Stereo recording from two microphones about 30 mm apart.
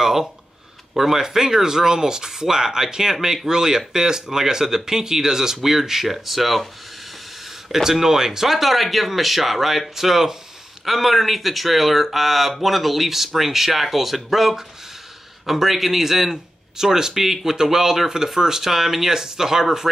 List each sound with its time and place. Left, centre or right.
0.0 s a sound: centre
0.9 s speech: centre
7.7 s speech: centre